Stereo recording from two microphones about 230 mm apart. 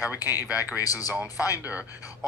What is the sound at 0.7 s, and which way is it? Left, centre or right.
Speech, centre.